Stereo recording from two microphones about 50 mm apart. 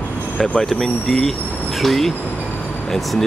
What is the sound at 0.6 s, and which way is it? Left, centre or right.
Speech, centre.